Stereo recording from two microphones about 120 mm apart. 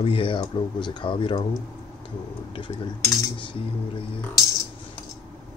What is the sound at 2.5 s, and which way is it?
Speech, 45° left (ahead or behind).